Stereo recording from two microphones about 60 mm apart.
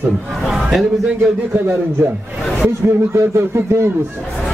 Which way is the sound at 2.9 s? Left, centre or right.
Right.